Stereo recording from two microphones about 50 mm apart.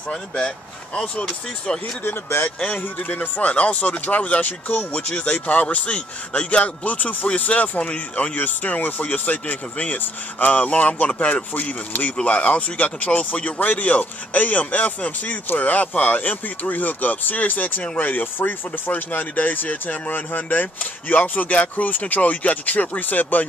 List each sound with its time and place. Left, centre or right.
0.9 s a man's voice: centre
2.4 s speech: left
5.1 s a man's voice: left